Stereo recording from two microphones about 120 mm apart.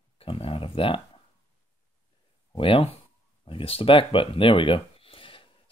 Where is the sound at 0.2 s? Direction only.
50° left (ahead or behind).